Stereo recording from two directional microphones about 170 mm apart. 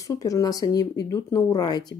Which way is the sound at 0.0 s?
20° left (ahead or behind).